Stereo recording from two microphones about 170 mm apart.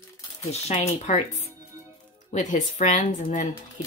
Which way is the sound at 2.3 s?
45° left (ahead or behind).